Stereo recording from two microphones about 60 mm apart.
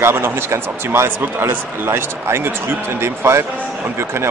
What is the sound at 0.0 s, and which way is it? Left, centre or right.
Speech, right.